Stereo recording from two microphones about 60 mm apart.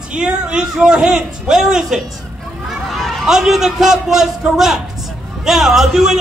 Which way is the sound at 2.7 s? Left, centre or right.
Centre.